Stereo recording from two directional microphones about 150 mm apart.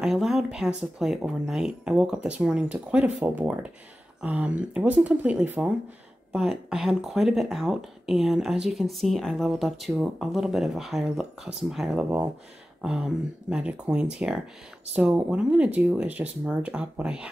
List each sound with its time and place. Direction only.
0.0 s speech: centre (ahead or behind)